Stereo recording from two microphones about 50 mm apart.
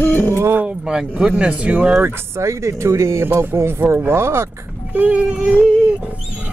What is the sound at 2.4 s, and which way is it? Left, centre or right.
Speech, right.